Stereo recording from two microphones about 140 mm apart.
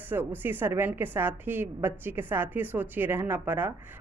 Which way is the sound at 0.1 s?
15° right (ahead or behind).